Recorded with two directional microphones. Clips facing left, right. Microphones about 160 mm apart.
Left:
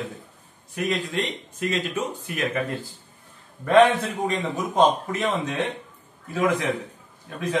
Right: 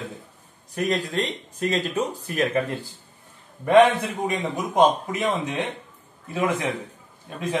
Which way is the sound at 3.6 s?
10° right (ahead or behind).